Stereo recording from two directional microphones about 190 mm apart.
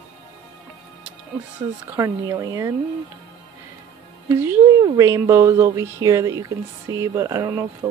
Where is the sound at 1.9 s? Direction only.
15° right (ahead or behind).